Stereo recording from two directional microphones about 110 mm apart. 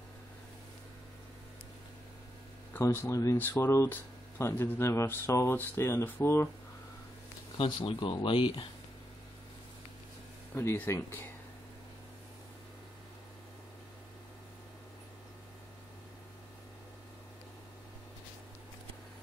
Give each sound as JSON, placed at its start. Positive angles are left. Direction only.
{"t": 2.8, "sound": "speech", "side_deg": 25}
{"t": 7.5, "sound": "speech", "side_deg": 50}
{"t": 10.5, "sound": "speech", "side_deg": 20}